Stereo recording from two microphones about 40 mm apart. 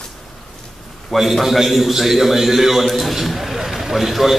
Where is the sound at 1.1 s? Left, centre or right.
Centre.